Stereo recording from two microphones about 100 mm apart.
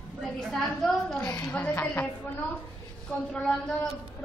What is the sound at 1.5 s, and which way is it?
Speech, 20° left (ahead or behind).